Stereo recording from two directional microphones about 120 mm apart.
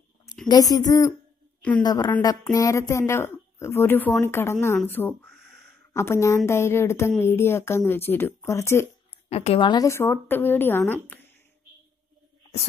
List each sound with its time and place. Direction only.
0.5 s a woman's voice: 30° left (ahead or behind)
9.3 s a woman's voice: 60° left (ahead or behind)
9.6 s a woman's voice: 40° left (ahead or behind)
9.8 s a woman's voice: 20° left (ahead or behind)